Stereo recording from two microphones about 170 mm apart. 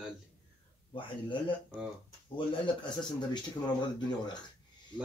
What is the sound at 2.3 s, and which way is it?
Speech, 30° left (ahead or behind).